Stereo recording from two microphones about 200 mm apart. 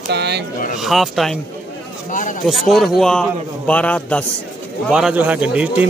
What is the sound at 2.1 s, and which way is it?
Speech, 40° left (ahead or behind).